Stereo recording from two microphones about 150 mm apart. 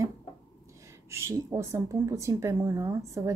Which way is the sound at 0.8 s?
20° right (ahead or behind).